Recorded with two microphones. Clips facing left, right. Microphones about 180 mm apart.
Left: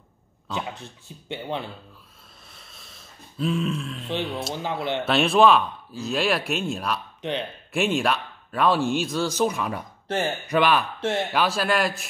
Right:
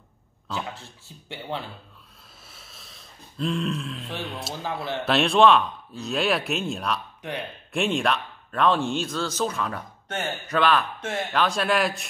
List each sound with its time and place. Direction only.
0.5 s speech: 20° left (ahead or behind)
2.5 s a sound: centre (ahead or behind)
4.2 s speech: centre (ahead or behind)
4.6 s a man's voice: 20° left (ahead or behind)
5.0 s speech: centre (ahead or behind)
7.2 s speech: 20° left (ahead or behind)
7.7 s speech: centre (ahead or behind)
10.0 s speech: 30° left (ahead or behind)
10.5 s speech: 10° left (ahead or behind)
11.0 s speech: 30° left (ahead or behind)
11.3 s speech: 5° left (ahead or behind)